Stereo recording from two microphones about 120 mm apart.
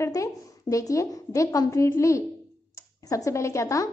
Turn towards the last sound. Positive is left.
turn(degrees=25)  # may be behind; listen again after turning